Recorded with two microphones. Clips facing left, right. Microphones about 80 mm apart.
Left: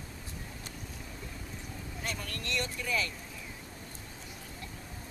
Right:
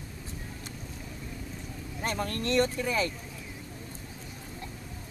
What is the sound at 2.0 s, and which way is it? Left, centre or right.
Speech, right.